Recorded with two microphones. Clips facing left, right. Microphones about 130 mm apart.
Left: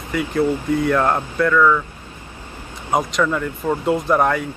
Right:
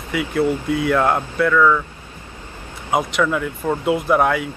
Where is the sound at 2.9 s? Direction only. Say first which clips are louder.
Even; 5° right (ahead or behind).